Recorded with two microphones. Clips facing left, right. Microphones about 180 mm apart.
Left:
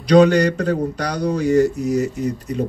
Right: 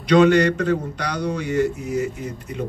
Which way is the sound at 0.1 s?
35° left (ahead or behind).